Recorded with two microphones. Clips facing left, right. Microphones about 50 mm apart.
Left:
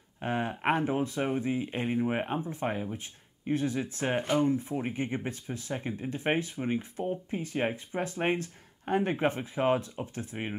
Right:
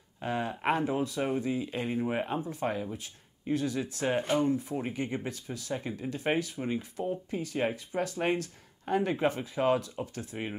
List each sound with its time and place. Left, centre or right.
0.2 s speech: left